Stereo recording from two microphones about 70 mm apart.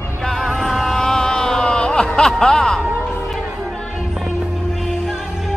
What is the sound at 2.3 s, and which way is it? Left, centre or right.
Music, centre.